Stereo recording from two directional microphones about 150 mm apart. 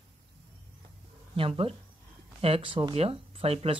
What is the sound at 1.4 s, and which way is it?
Speech, 40° right (ahead or behind).